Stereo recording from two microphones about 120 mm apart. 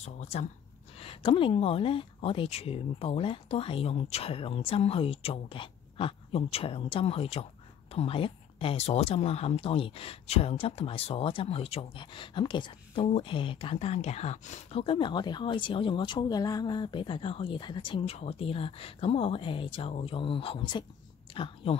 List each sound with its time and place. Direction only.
0.0 s speech: 70° left (ahead or behind)
0.9 s speech: 50° left (ahead or behind)